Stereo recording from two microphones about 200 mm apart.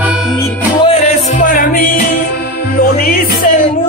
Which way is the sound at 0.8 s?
35° left (ahead or behind).